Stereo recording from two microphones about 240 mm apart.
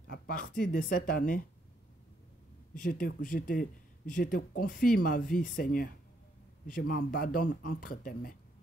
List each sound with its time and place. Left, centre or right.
0.0 s speech: left
2.7 s speech: left